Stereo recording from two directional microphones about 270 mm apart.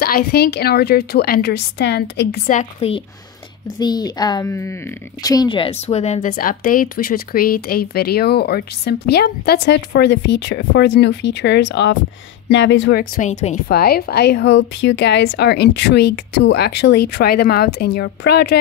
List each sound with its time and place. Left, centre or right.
0.0 s speech: left
3.8 s speech: centre; by 18.6 s left